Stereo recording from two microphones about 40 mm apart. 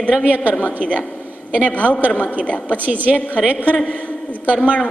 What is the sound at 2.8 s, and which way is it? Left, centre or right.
Speech, right.